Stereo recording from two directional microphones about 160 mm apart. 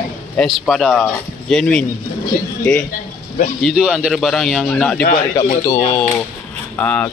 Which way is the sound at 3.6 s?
Centre (ahead or behind).